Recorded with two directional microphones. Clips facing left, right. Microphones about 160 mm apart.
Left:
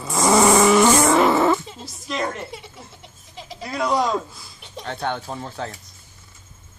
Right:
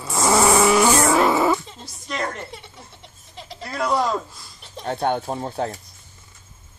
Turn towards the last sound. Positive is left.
turn(degrees=-35)  # may be behind; listen again after turning